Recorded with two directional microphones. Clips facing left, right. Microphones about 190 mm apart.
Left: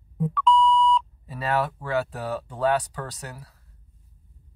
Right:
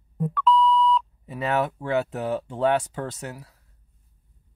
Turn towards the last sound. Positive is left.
turn(degrees=-25)  # may be behind; listen again after turning